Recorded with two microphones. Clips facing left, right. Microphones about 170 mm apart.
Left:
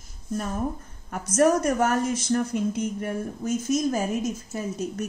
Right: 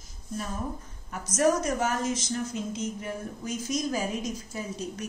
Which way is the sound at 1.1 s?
55° left (ahead or behind).